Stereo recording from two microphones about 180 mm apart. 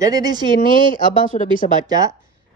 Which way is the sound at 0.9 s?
50° left (ahead or behind).